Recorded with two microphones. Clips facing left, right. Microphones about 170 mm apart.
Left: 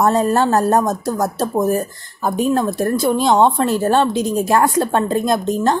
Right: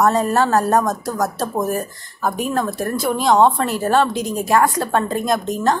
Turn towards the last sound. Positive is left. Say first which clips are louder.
# left 2 dB
turn(degrees=25)  # may be behind; listen again after turning